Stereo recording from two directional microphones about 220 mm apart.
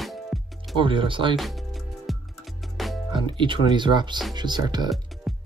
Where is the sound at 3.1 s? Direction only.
20° right (ahead or behind).